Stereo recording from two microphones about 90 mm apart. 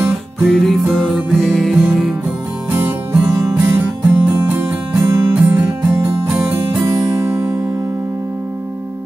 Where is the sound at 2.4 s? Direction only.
25° right (ahead or behind).